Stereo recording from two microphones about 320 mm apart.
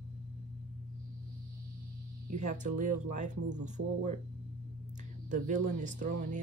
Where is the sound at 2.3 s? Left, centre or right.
Right.